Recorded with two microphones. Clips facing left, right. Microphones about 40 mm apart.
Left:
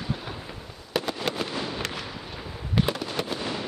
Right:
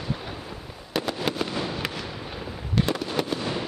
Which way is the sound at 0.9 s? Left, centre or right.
Centre.